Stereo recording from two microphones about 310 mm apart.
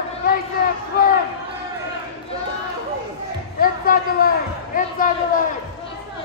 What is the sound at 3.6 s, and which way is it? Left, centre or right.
Basketball bounce, left.